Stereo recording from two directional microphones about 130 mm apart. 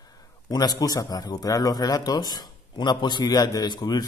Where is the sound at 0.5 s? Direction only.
30° left (ahead or behind).